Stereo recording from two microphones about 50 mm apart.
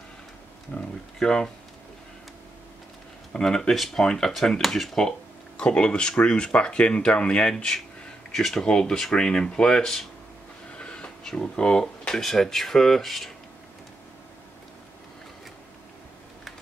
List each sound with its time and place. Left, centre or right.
0.7 s speech: left
3.3 s speech: centre
3.7 s speech: centre
5.6 s speech: centre
10.8 s a sound: left
11.2 s speech: centre
12.1 s speech: centre